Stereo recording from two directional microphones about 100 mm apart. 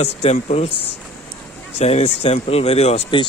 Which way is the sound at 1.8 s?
90° left.